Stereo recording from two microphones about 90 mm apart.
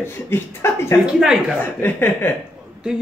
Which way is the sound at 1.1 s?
5° right (ahead or behind).